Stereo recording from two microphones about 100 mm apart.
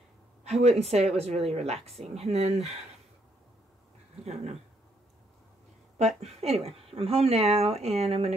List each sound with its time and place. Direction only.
0.4 s speech: 90° right
4.2 s speech: 90° right
5.9 s speech: 90° right